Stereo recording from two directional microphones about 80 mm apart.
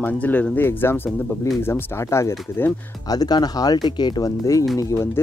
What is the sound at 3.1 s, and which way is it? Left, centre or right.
Speech, left.